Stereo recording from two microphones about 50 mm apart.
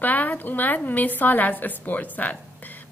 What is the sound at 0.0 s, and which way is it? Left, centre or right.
A woman's voice, left.